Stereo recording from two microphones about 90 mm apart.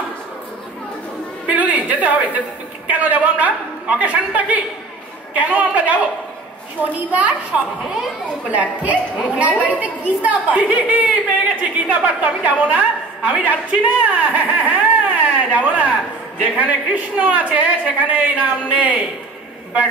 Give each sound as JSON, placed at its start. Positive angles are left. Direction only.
{"t": 1.5, "sound": "a sound", "side_deg": -15}
{"t": 2.9, "sound": "a man's voice", "side_deg": -15}
{"t": 7.1, "sound": "a man's voice", "side_deg": -15}
{"t": 7.8, "sound": "a child's voice", "side_deg": -5}
{"t": 8.5, "sound": "a man's voice", "side_deg": -15}